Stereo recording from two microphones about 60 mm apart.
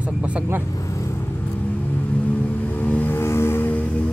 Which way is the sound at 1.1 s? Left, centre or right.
Left.